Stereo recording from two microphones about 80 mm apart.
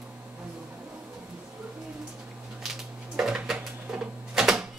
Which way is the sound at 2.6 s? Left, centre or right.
Centre.